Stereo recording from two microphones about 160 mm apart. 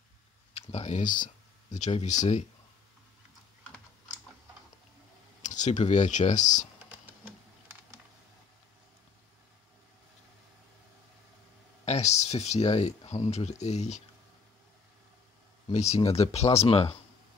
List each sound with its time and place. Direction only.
0.6 s speech: 40° left (ahead or behind)
5.4 s speech: 50° left (ahead or behind)
11.8 s speech: 45° left (ahead or behind)
15.7 s speech: 45° left (ahead or behind)